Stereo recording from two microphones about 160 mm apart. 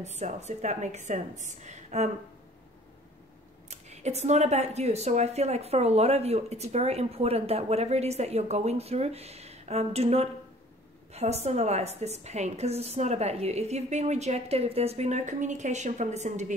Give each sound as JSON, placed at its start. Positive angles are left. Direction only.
{"t": 0.0, "sound": "a woman's voice", "side_deg": -45}
{"t": 3.7, "sound": "a woman's voice", "side_deg": -45}